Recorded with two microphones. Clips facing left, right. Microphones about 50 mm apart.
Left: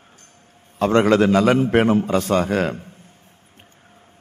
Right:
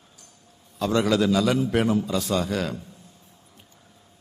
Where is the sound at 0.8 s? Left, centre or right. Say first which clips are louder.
Left 6 dB; left.